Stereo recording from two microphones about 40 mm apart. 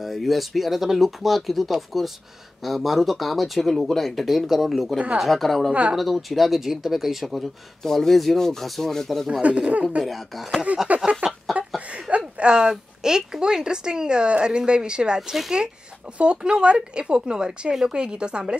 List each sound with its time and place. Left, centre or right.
0.0 s speech: centre
4.9 s a woman's voice: right
5.2 s speech: centre
5.7 s speech: right
5.9 s speech: centre
7.8 s rub: centre
9.3 s speech: right
10.0 s speech: centre
11.0 s chicken: centre
11.5 s a sound: centre
12.4 s a woman's voice: right